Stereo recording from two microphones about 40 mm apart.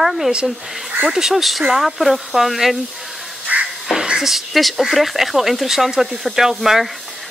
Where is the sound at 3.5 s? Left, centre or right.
Right.